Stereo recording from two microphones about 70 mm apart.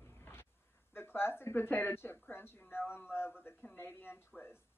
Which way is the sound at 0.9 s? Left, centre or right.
Left.